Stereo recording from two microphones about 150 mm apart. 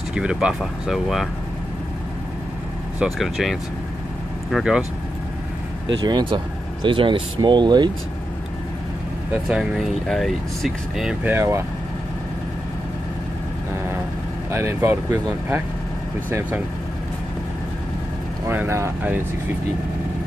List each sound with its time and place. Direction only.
0.1 s speech: 5° right (ahead or behind)
3.0 s speech: centre (ahead or behind)
6.0 s speech: 30° right (ahead or behind)
9.5 s speech: centre (ahead or behind)
11.3 s speech: 15° right (ahead or behind)
14.5 s speech: 15° right (ahead or behind)
16.3 s speech: 10° right (ahead or behind)
18.5 s speech: 15° right (ahead or behind)